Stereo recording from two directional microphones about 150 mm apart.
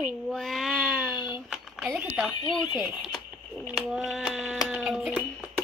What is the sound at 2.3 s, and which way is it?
Speech, 30° left (ahead or behind).